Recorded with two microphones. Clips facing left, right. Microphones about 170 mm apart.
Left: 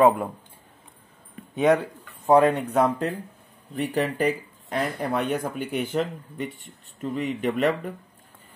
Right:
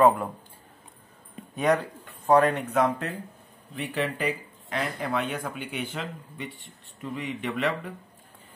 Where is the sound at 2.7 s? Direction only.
35° left (ahead or behind).